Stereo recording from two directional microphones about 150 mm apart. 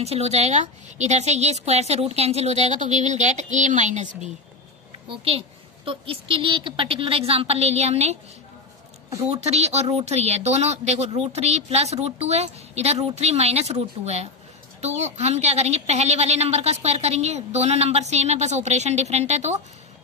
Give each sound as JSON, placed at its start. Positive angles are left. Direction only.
{"t": 0.0, "sound": "speech", "side_deg": -45}
{"t": 5.9, "sound": "a woman's voice", "side_deg": -35}
{"t": 9.2, "sound": "speech", "side_deg": -45}